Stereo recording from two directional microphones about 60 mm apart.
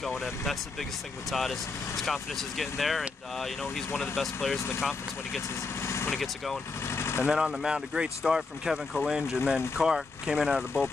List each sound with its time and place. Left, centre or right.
1.3 s speech: centre
3.9 s speech: centre
4.6 s speech: left
5.8 s vehicle: left
6.1 s speech: centre
6.9 s engine: left
7.2 s speech: centre